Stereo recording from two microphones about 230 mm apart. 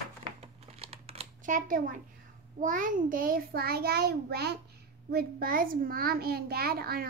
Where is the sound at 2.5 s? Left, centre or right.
Right.